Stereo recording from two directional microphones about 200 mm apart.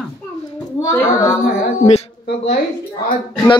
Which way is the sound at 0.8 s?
15° left (ahead or behind).